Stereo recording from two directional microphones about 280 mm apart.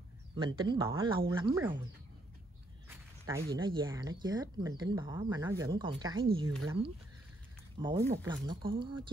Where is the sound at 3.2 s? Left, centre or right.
Centre.